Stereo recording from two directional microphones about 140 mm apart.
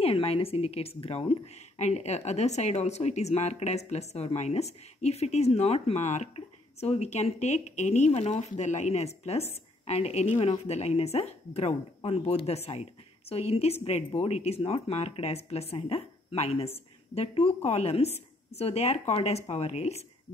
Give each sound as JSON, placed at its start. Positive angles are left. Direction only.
{"t": 0.0, "sound": "a woman's voice", "side_deg": 45}